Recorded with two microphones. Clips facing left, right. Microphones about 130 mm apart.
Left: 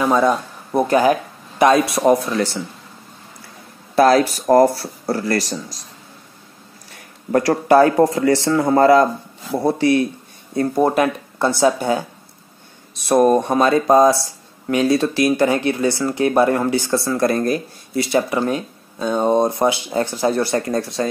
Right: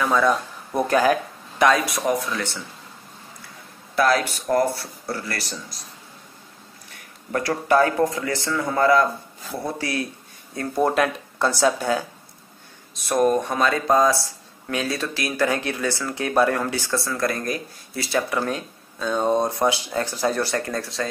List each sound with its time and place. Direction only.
0.0 s speech: 25° left (ahead or behind)
3.9 s speech: 35° left (ahead or behind)
6.9 s speech: 35° left (ahead or behind)
9.8 s speech: 25° left (ahead or behind)
13.0 s speech: 25° left (ahead or behind)